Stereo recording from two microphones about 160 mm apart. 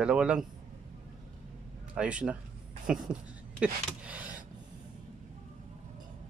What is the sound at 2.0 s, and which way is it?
Speech, 5° right (ahead or behind).